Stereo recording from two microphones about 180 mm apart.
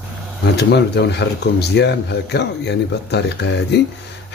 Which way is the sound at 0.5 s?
65° left (ahead or behind).